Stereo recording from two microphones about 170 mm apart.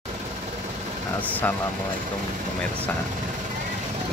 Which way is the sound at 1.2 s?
10° left (ahead or behind).